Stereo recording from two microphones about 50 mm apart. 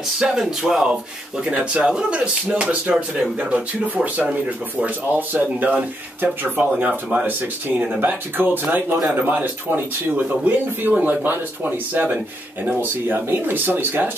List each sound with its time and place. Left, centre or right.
0.2 s speech: centre
1.4 s speech: right